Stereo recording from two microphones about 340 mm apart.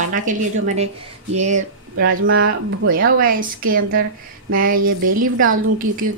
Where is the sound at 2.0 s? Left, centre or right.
Right.